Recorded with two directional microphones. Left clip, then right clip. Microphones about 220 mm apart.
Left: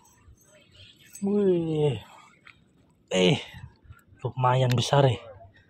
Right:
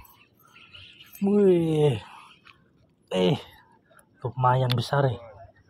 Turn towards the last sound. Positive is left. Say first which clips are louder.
# left 3 dB
turn(degrees=10)  # may be behind; listen again after turning